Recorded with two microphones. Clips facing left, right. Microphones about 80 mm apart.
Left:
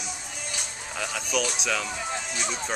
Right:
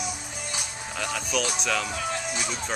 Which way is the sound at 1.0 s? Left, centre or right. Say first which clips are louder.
Even; centre.